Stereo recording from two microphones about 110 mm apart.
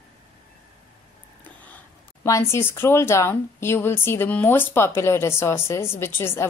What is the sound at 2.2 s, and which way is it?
A woman's voice, 25° left (ahead or behind).